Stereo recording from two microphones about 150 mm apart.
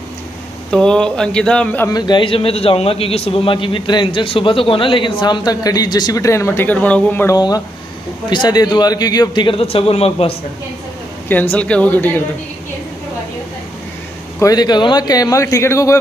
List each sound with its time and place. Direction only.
0.7 s speech: 5° left (ahead or behind)
1.9 s a man's voice: 30° left (ahead or behind); by 7.3 s 15° left (ahead or behind)
7.3 s a man's voice: 25° left (ahead or behind); by 10.3 s 40° left (ahead or behind)
11.2 s speech: 10° left (ahead or behind)
14.4 s speech: 25° left (ahead or behind)